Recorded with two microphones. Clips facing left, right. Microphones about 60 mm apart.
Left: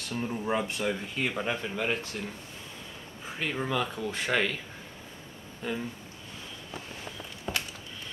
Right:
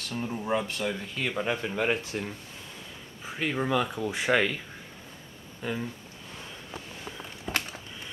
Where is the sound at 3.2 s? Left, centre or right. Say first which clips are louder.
Right 3 dB; centre.